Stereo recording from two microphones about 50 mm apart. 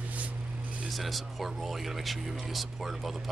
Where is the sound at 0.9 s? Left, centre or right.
Centre.